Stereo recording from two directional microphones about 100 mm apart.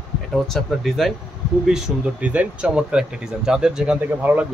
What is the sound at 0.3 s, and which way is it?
Speech, 5° left (ahead or behind).